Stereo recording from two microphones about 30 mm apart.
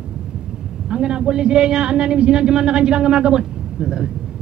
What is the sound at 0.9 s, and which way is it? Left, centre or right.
A man's voice, right.